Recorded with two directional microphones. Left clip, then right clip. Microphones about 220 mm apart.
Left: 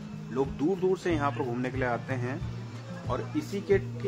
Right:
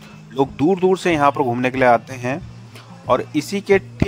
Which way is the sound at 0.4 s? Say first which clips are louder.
Right 11 dB; 35° right (ahead or behind).